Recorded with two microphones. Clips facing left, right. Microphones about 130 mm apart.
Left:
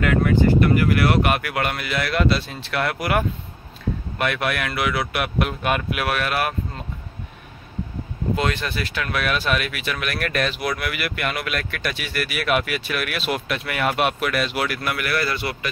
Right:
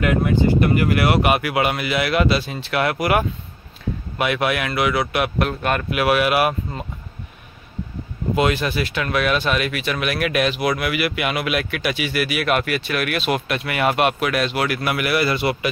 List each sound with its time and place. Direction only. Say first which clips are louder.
0.0 s speech: even; 20° right (ahead or behind); by 6.0 s 5° left (ahead or behind)
6.0 s speech: right 7 dB; 10° right (ahead or behind)
8.4 s speech: right 7 dB; 10° right (ahead or behind)
15.0 s speech: right 6 dB; 15° right (ahead or behind)